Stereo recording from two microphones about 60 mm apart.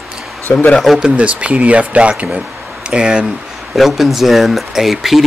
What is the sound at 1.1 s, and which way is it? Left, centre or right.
Speech, right.